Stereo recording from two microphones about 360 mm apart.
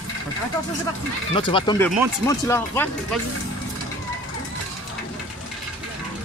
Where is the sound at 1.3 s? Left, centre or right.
Centre.